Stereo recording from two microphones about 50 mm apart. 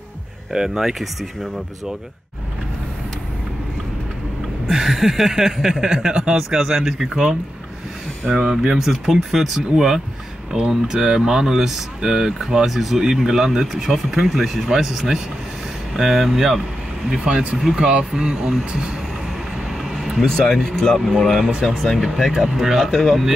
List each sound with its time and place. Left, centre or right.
0.5 s speech: centre
4.6 s speech: centre
6.3 s speech: centre
8.4 s speech: centre
17.2 s speech: right
20.0 s a sound: centre
20.2 s speech: centre
22.8 s speech: centre